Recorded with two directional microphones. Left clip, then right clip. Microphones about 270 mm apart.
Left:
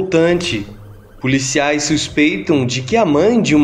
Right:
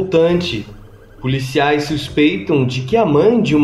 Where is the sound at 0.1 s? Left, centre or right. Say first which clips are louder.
Even; left.